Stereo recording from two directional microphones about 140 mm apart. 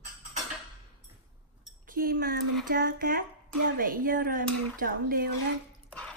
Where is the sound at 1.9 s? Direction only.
90° right.